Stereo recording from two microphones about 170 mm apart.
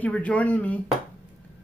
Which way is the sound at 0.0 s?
10° left (ahead or behind).